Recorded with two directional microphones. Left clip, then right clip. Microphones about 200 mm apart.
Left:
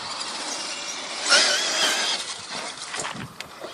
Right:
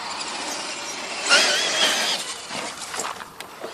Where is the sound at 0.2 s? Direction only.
5° left (ahead or behind).